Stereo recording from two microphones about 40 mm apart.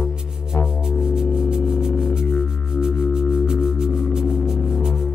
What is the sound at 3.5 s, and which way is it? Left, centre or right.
Music, centre.